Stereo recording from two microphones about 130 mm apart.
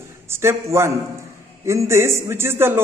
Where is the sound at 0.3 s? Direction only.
20° right (ahead or behind).